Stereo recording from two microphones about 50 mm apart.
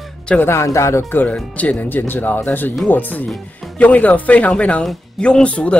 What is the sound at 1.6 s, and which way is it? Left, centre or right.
Speech, left.